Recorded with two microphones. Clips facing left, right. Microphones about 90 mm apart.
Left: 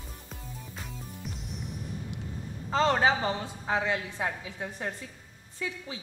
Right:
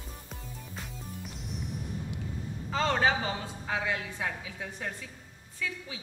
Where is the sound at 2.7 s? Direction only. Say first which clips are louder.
Left 4 dB; 30° left (ahead or behind).